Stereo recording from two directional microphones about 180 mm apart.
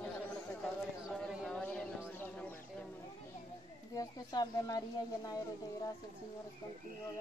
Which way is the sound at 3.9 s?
20° left (ahead or behind).